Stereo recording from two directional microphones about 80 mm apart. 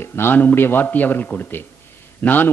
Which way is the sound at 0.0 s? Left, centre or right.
Left.